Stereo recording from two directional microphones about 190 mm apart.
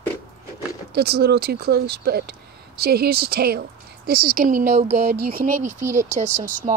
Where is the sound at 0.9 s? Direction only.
55° right (ahead or behind); by 5.0 s 40° right (ahead or behind).